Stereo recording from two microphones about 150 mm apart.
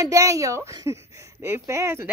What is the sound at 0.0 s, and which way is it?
A woman's voice, 20° right (ahead or behind).